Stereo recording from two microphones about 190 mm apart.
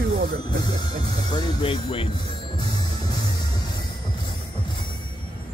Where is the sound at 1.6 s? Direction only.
30° left (ahead or behind).